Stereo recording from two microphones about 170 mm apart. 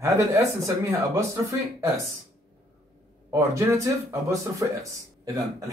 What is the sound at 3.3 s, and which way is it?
Speech, 15° right (ahead or behind).